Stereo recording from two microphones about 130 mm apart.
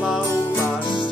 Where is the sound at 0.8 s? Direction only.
40° left (ahead or behind).